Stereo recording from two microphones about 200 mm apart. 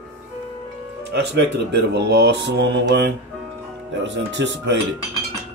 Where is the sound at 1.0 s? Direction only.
60° right (ahead or behind).